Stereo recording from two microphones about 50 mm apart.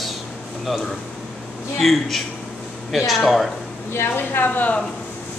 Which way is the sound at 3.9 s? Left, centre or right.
Left.